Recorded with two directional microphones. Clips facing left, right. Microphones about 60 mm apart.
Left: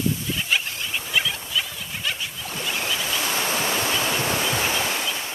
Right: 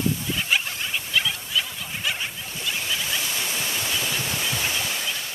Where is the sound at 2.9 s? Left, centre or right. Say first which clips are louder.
Left 3 dB; left.